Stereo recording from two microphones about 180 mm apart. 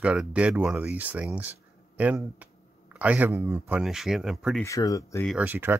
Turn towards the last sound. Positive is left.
turn(degrees=-10)  # may be behind; listen again after turning